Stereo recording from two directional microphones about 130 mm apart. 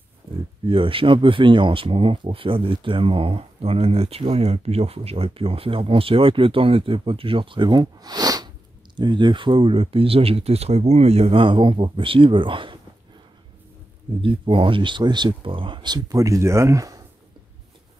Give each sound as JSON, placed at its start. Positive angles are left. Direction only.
{"t": 0.7, "sound": "speech", "side_deg": -45}
{"t": 14.2, "sound": "speech", "side_deg": -40}